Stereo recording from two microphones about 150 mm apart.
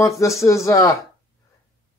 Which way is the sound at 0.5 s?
20° left (ahead or behind).